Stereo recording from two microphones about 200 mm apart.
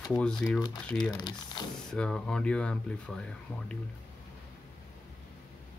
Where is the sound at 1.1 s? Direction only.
20° left (ahead or behind).